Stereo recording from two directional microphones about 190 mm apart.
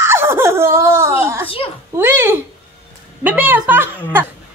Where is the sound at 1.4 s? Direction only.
30° left (ahead or behind).